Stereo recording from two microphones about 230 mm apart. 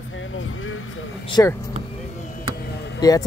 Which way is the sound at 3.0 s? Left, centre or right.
Centre.